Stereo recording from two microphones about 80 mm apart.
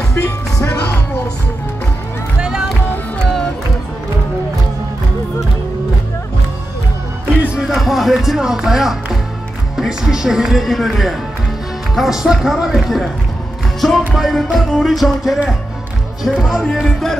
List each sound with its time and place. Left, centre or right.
0.1 s music: left
2.4 s music: centre
7.5 s music: centre
9.8 s speech: centre
11.9 s music: centre